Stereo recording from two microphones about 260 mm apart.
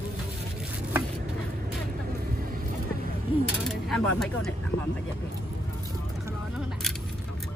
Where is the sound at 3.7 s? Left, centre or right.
Centre.